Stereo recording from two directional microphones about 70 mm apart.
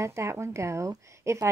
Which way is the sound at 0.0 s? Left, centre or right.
Right.